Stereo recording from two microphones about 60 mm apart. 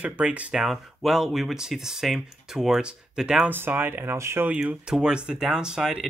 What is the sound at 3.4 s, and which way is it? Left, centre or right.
Speech, right.